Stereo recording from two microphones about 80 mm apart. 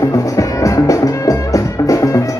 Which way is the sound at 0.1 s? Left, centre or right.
Left.